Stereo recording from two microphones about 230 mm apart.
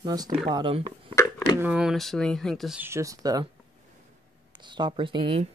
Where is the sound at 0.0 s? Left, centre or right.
Centre.